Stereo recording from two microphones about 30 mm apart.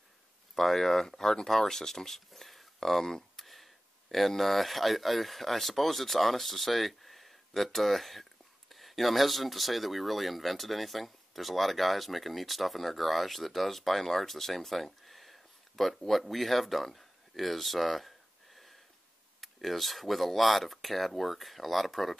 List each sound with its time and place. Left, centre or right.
0.6 s speech: centre
3.3 s a sound: centre
4.4 s speech: centre